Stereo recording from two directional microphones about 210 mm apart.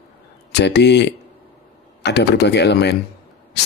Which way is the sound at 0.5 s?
55° left (ahead or behind).